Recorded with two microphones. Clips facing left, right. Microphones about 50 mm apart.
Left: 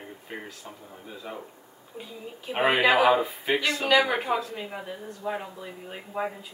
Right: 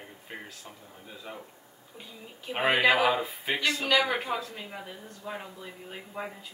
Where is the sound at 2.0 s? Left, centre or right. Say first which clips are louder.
Left 5 dB; centre.